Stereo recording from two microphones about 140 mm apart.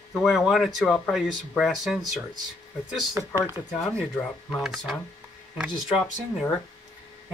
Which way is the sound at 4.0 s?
5° left (ahead or behind).